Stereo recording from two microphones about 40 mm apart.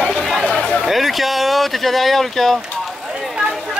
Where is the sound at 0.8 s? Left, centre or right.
Centre.